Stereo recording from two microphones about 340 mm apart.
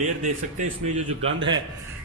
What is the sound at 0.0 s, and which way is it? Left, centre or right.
Speech, right.